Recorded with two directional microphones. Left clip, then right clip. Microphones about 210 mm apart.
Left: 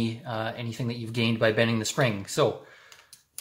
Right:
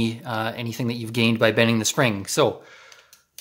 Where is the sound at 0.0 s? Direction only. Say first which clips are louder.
Right 5 dB; 45° right (ahead or behind).